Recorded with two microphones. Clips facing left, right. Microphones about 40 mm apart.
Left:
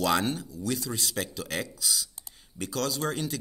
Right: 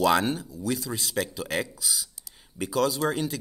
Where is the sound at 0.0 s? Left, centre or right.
Centre.